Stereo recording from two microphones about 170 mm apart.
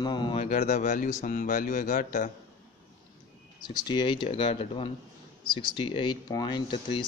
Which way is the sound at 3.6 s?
25° left (ahead or behind).